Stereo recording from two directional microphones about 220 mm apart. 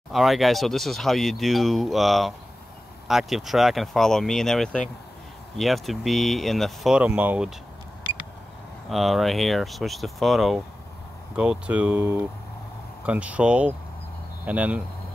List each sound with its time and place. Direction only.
0.1 s speech: centre (ahead or behind)
8.8 s speech: centre (ahead or behind)